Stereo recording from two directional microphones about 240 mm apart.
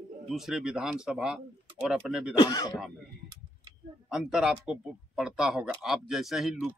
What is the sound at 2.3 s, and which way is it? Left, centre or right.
Speech, centre.